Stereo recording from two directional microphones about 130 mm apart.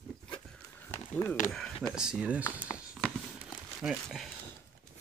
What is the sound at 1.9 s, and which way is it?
Speech, 5° right (ahead or behind).